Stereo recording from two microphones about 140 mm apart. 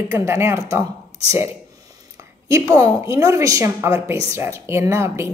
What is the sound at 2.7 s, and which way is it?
Speech, 20° right (ahead or behind).